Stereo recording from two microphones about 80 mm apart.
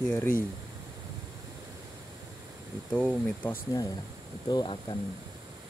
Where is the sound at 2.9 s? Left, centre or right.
Centre.